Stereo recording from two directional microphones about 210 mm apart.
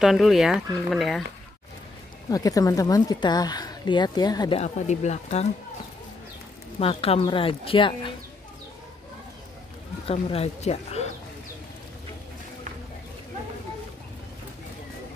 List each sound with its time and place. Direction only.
0.0 s speech: centre (ahead or behind)
2.2 s speech: 15° left (ahead or behind); by 5.5 s 30° left (ahead or behind)
6.8 s speech: 25° left (ahead or behind)
10.0 s speech: 30° left (ahead or behind)